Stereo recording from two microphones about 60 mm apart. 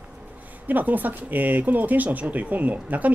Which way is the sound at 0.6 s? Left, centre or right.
Right.